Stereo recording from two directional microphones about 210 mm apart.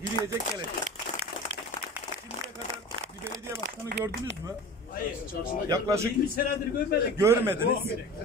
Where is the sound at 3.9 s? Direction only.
55° right (ahead or behind).